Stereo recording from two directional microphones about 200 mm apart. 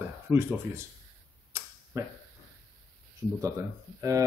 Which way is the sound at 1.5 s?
10° right (ahead or behind).